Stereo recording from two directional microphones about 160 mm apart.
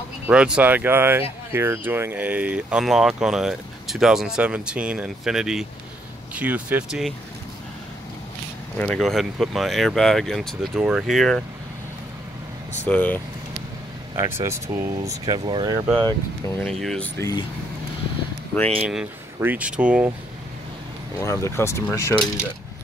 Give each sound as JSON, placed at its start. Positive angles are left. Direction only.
{"t": 0.3, "sound": "speech", "side_deg": -5}
{"t": 8.7, "sound": "speech", "side_deg": 5}
{"t": 12.8, "sound": "speech", "side_deg": 10}
{"t": 14.1, "sound": "speech", "side_deg": -20}
{"t": 16.6, "sound": "speech", "side_deg": 5}
{"t": 17.2, "sound": "speech", "side_deg": 25}
{"t": 18.9, "sound": "speech", "side_deg": -5}
{"t": 21.2, "sound": "speech", "side_deg": 20}